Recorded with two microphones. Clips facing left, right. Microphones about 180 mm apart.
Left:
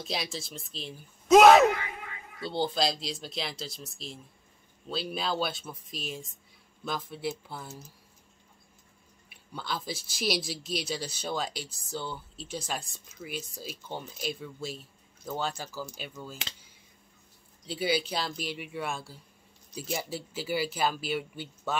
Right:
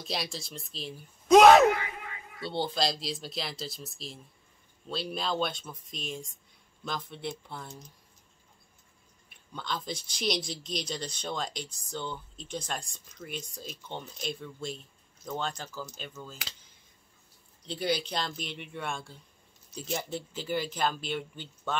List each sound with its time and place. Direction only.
0.0 s speech: centre (ahead or behind)
9.3 s speech: 5° left (ahead or behind)
17.6 s speech: 5° left (ahead or behind)